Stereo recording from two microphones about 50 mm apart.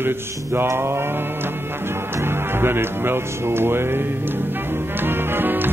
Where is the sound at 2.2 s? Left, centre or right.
Right.